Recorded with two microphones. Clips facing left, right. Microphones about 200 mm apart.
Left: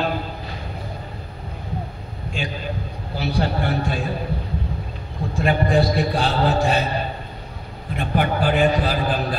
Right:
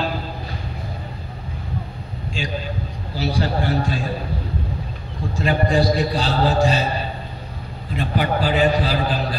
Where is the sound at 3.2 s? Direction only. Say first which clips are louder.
Right 1 dB; 55° left (ahead or behind).